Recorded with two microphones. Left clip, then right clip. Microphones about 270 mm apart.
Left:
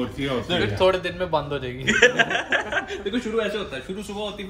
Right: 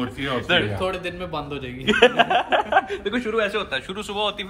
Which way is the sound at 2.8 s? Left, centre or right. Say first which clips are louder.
Right 2 dB; right.